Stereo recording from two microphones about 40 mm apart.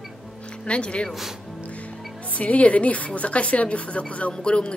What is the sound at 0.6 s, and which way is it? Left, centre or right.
Speech, left.